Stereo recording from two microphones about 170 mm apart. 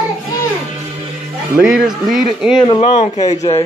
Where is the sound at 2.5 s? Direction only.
30° left (ahead or behind).